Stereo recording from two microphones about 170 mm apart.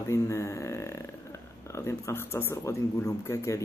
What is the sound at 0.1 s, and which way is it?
Speech, 15° left (ahead or behind).